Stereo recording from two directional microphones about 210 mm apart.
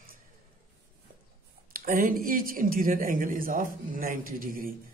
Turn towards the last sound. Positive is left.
turn(degrees=-40)  # may be behind; listen again after turning